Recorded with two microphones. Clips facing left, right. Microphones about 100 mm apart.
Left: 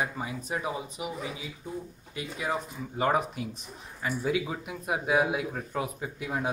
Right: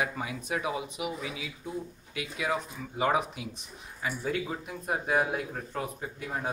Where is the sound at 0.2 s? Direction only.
35° left (ahead or behind).